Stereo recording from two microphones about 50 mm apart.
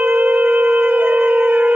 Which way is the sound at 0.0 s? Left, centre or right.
Right.